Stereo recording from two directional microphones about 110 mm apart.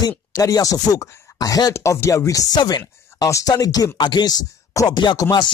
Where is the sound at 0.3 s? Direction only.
35° left (ahead or behind).